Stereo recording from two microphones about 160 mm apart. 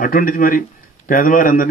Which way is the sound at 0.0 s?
60° left (ahead or behind).